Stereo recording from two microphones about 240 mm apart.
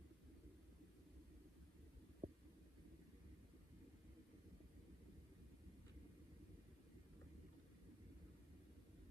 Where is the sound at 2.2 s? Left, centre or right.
Right.